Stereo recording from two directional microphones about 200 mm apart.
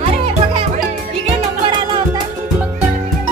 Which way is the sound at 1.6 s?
25° right (ahead or behind).